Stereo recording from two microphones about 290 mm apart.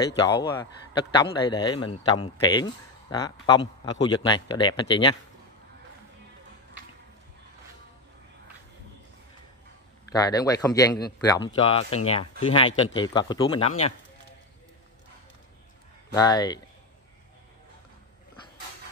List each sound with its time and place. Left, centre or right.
0.4 s a man's voice: centre
10.1 s a man's voice: centre
16.1 s a man's voice: centre